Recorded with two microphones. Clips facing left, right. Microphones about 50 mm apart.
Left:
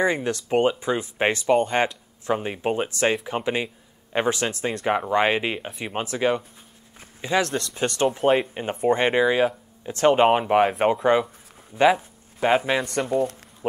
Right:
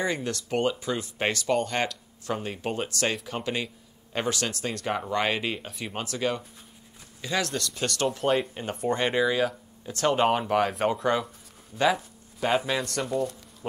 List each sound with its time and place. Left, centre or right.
0.0 s speech: left